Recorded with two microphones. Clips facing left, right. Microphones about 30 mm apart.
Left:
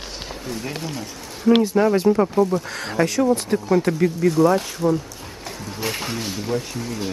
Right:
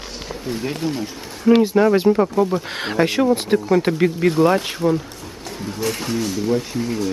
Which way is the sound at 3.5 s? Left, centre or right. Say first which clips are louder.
Right 4 dB; centre.